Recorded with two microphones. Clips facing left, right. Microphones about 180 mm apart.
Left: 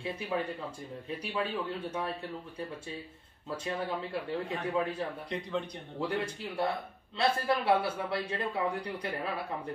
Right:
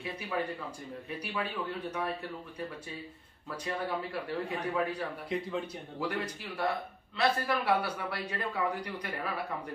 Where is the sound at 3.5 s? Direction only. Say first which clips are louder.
Even; 25° left (ahead or behind).